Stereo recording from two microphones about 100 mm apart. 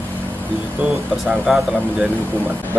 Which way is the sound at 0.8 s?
5° right (ahead or behind).